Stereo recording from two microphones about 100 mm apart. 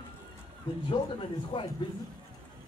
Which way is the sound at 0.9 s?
55° left (ahead or behind).